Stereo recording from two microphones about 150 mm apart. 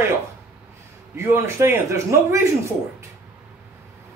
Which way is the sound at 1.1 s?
15° right (ahead or behind).